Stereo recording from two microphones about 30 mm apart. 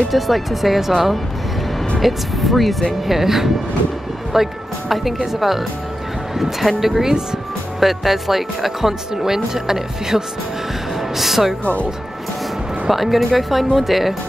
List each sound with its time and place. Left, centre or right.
0.1 s speech: centre
2.0 s speech: centre
3.1 s speech: centre
6.8 s speech: centre
11.6 s speech: left
12.9 s speech: centre